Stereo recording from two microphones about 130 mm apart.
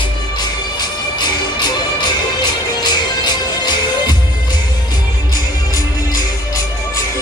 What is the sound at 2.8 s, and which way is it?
Music, 35° left (ahead or behind).